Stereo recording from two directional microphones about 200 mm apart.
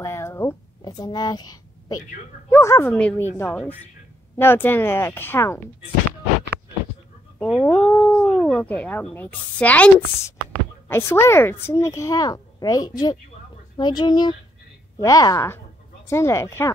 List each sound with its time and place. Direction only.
0.0 s a sound: 15° left (ahead or behind)
2.5 s a woman's voice: 10° left (ahead or behind)
7.3 s a woman's voice: 5° left (ahead or behind)